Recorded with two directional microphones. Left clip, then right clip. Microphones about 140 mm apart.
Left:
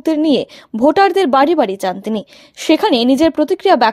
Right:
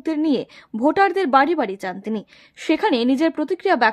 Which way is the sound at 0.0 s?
20° left (ahead or behind).